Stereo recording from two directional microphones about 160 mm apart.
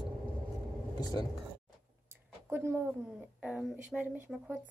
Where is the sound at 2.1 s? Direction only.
15° right (ahead or behind).